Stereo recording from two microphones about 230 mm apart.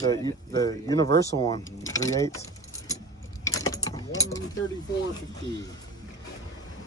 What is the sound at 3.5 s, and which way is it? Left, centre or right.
Keys jangling, centre.